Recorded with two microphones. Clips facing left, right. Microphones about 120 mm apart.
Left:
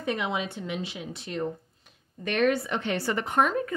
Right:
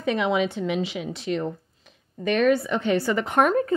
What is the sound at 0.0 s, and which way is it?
A woman's voice, 90° right.